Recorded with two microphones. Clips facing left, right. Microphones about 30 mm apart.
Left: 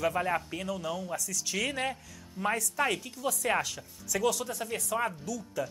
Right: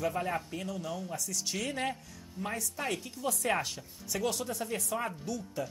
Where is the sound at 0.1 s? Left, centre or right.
Left.